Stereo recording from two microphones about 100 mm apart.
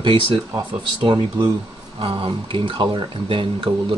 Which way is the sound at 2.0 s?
60° right (ahead or behind).